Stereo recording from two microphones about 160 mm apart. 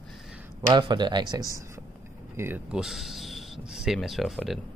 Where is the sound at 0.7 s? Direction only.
30° right (ahead or behind).